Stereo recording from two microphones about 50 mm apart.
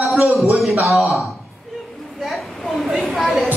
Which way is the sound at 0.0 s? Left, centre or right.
Right.